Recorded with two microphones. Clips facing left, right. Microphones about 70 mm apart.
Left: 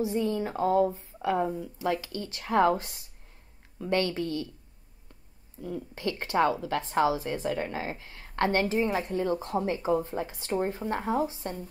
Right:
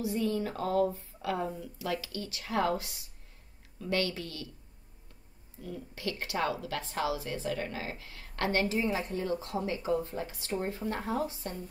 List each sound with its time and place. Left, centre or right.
0.0 s a woman's voice: left
5.9 s a woman's voice: left
9.0 s a woman's voice: left